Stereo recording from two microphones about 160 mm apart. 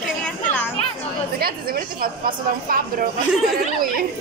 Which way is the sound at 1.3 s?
70° right (ahead or behind).